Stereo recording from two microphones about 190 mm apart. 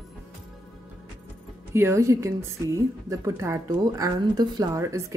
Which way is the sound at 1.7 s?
15° right (ahead or behind).